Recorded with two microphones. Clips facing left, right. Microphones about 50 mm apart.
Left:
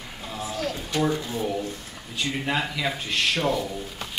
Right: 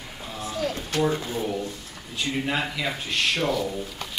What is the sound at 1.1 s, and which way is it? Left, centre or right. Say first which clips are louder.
Speech: right 1 dB; right.